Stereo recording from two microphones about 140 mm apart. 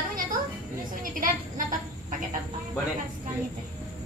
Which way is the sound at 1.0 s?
75° right (ahead or behind).